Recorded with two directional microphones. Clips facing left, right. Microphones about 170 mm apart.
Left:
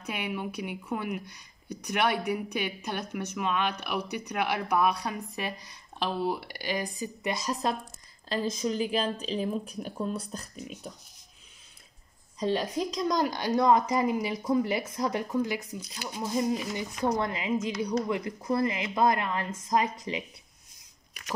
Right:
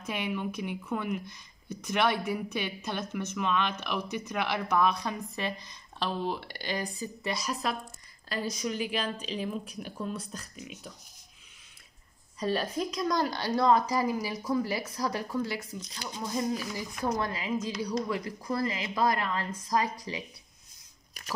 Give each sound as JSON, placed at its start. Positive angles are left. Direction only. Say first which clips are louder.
{"t": 0.0, "sound": "speech", "louder": "right 1 dB", "side_deg": 10}
{"t": 8.3, "sound": "speech", "louder": "left 3 dB", "side_deg": 35}
{"t": 12.4, "sound": "a woman's voice", "louder": "left 2 dB", "side_deg": 15}
{"t": 16.5, "sound": "a woman's voice", "louder": "left 3 dB", "side_deg": 20}